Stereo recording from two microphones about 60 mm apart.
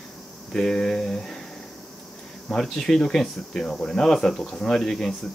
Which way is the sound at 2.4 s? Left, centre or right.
Centre.